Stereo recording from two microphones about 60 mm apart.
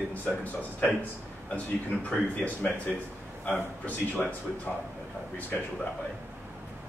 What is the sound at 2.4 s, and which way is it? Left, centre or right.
Speech, left.